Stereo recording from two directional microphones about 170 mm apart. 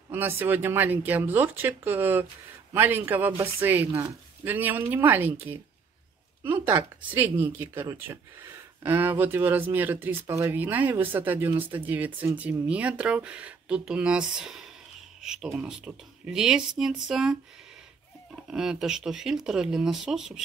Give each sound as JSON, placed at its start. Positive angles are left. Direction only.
{"t": 0.1, "sound": "speech", "side_deg": -10}
{"t": 18.5, "sound": "speech", "side_deg": -5}